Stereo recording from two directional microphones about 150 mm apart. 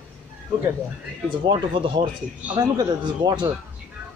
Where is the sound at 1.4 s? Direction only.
35° right (ahead or behind).